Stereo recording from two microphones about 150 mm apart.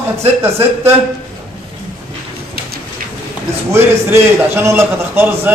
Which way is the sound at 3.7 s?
15° right (ahead or behind).